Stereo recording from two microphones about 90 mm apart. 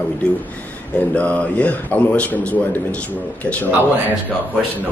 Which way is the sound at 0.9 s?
15° left (ahead or behind).